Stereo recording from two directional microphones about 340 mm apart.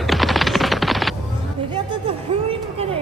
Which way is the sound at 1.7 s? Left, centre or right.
Centre.